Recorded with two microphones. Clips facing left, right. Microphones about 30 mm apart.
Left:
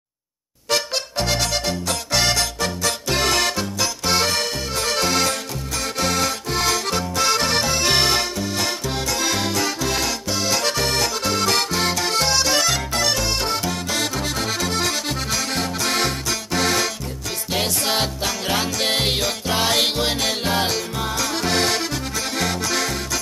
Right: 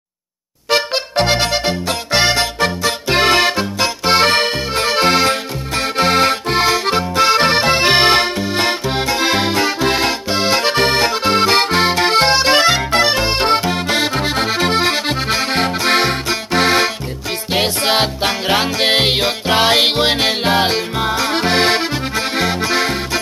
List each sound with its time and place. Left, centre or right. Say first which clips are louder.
0.7 s music: right 6 dB; right